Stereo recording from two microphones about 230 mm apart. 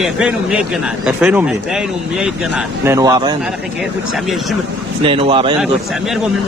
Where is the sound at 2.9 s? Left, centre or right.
Centre.